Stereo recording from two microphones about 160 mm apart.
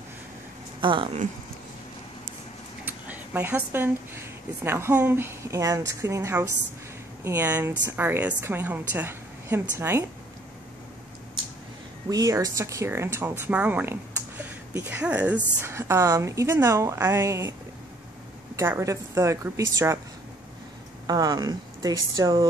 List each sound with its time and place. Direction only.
0.7 s speech: 30° right (ahead or behind)
2.8 s speech: 10° right (ahead or behind)
12.1 s speech: 20° right (ahead or behind)
18.6 s speech: 15° right (ahead or behind)
21.1 s speech: 25° right (ahead or behind)